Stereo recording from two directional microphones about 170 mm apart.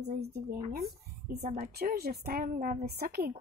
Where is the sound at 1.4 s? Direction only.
60° right (ahead or behind).